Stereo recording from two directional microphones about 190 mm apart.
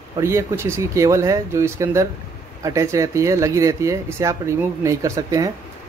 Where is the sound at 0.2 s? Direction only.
15° right (ahead or behind).